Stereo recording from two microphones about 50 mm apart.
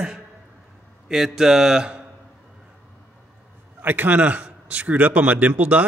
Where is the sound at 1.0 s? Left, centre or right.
Centre.